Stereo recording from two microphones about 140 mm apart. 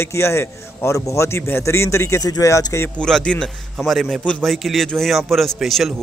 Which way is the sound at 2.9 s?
5° left (ahead or behind).